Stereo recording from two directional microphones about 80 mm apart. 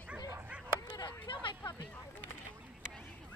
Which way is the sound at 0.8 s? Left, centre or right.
Left.